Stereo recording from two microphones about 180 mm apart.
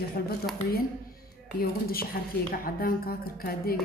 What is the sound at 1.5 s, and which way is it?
A woman's voice, 55° left (ahead or behind).